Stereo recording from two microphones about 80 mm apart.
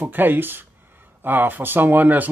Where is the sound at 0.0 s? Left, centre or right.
Right.